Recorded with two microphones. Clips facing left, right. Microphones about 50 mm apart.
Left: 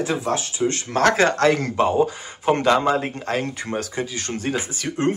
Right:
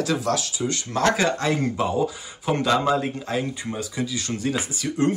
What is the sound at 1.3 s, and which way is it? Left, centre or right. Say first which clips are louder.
Speech: left 5 dB; left.